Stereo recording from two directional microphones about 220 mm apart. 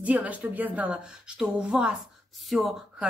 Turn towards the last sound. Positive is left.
turn(degrees=0)  # may be behind; listen again after turning